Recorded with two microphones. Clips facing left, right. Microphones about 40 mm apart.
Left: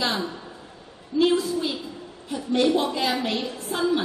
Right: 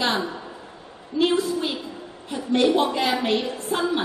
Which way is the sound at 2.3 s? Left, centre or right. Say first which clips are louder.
Right 2 dB; right.